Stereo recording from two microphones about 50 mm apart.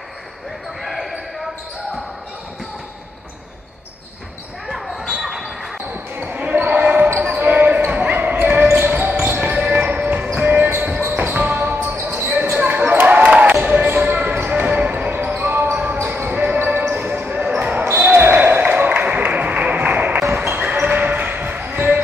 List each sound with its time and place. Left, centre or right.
0.8 s basketball bounce: centre
4.6 s basketball bounce: centre
6.2 s basketball bounce: right
9.6 s basketball bounce: right
11.9 s basketball bounce: right
12.5 s basketball bounce: right
15.1 s basketball bounce: right